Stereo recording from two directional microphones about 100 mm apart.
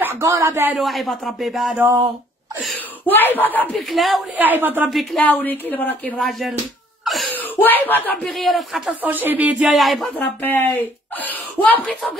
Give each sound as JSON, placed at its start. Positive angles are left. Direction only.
{"t": 0.0, "sound": "speech", "side_deg": -25}
{"t": 0.7, "sound": "speech", "side_deg": 0}
{"t": 2.7, "sound": "speech", "side_deg": 20}
{"t": 3.7, "sound": "speech", "side_deg": 0}
{"t": 4.4, "sound": "speech", "side_deg": -20}
{"t": 4.8, "sound": "speech", "side_deg": 0}
{"t": 5.2, "sound": "speech", "side_deg": 15}
{"t": 6.1, "sound": "speech", "side_deg": 0}
{"t": 7.3, "sound": "speech", "side_deg": 20}
{"t": 8.3, "sound": "speech", "side_deg": 0}
{"t": 8.8, "sound": "speech", "side_deg": -15}
{"t": 9.7, "sound": "speech", "side_deg": 0}
{"t": 10.1, "sound": "speech", "side_deg": 20}